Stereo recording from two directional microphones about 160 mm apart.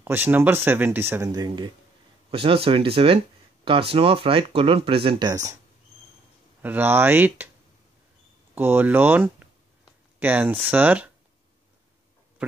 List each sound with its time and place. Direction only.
0.0 s speech: 10° right (ahead or behind)
1.3 s speech: 25° right (ahead or behind)
2.3 s speech: 35° right (ahead or behind)
5.3 s speech: 20° right (ahead or behind)
6.6 s speech: 10° right (ahead or behind)
8.5 s speech: 10° right (ahead or behind)